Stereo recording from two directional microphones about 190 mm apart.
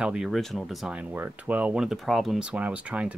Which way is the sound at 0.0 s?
5° right (ahead or behind).